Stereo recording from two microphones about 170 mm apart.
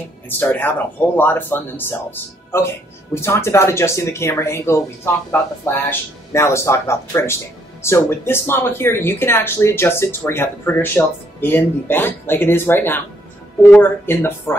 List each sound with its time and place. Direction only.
0.4 s speech: 10° left (ahead or behind)